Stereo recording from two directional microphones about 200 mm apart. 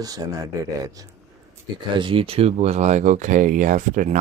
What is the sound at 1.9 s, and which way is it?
Speech, 25° right (ahead or behind).